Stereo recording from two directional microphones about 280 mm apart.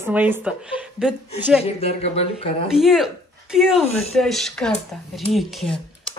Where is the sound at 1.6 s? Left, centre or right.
Left.